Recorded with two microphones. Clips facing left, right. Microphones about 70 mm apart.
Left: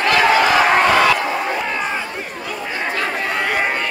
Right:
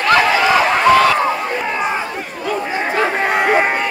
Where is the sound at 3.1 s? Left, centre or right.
Right.